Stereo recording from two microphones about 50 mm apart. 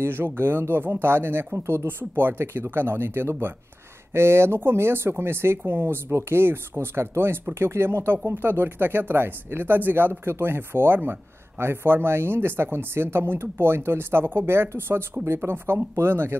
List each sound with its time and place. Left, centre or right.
0.0 s speech: right